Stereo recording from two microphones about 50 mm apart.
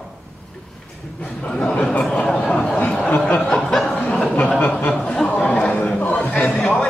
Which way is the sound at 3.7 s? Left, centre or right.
Centre.